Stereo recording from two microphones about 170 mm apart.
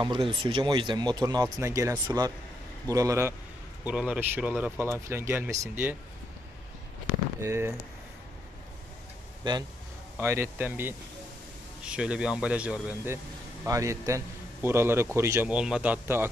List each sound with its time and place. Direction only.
0.0 s speech: 30° right (ahead or behind)
3.8 s a man's voice: 5° right (ahead or behind)
7.3 s a man's voice: 15° right (ahead or behind)
9.4 s speech: 25° right (ahead or behind)
10.1 s a man's voice: 15° right (ahead or behind)
15.5 s a man's voice: 5° right (ahead or behind)